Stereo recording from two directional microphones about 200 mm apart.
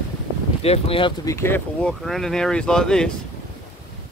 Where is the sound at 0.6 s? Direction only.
30° left (ahead or behind).